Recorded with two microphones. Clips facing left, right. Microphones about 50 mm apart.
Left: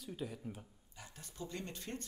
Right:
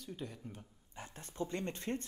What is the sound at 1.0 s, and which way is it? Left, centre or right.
Speech, right.